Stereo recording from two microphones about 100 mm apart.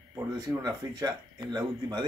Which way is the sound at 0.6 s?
40° right (ahead or behind).